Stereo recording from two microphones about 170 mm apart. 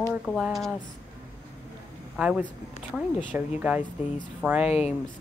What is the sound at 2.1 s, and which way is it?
A man's voice, 5° right (ahead or behind).